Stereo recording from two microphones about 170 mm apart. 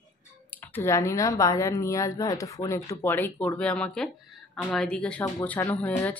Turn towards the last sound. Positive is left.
turn(degrees=10)  # may be behind; listen again after turning